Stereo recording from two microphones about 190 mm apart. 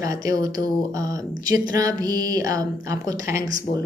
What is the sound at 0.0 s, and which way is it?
Speech, 20° right (ahead or behind).